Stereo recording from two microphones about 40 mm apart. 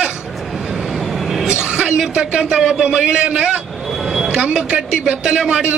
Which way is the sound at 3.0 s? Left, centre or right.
Right.